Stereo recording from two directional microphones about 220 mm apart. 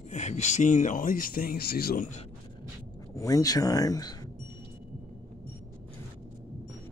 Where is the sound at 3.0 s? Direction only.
15° left (ahead or behind).